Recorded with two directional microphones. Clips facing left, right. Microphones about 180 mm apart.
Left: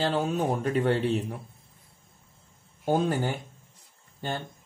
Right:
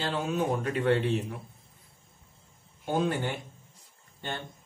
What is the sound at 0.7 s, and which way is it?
Speech, 35° left (ahead or behind).